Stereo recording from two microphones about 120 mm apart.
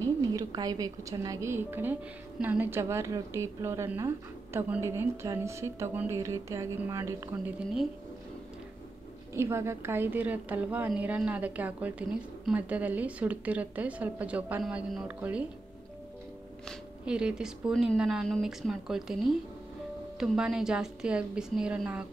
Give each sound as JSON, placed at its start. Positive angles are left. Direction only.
{"t": 0.0, "sound": "a woman's voice", "side_deg": -30}
{"t": 7.4, "sound": "a woman's voice", "side_deg": -5}
{"t": 9.3, "sound": "a woman's voice", "side_deg": -20}
{"t": 17.0, "sound": "speech", "side_deg": -5}
{"t": 20.2, "sound": "speech", "side_deg": -5}